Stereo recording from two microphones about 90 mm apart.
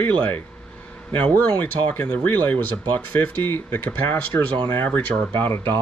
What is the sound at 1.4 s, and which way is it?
Speech, 20° left (ahead or behind).